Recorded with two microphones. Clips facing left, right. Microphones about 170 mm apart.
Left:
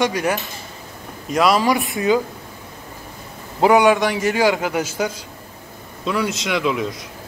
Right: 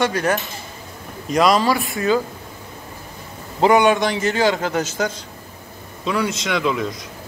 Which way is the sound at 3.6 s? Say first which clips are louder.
Left 1 dB; 10° left (ahead or behind).